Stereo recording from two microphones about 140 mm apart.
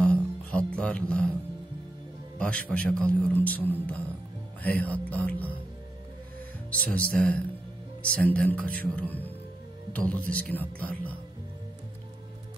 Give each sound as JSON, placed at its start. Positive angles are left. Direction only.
{"t": 0.0, "sound": "music", "side_deg": 10}
{"t": 2.3, "sound": "a man's voice", "side_deg": 10}
{"t": 6.9, "sound": "a man's voice", "side_deg": 10}